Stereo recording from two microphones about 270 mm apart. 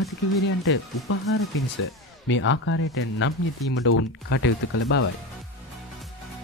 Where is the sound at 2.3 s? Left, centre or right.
Left.